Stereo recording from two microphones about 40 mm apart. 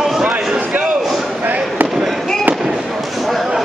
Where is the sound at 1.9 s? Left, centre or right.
Centre.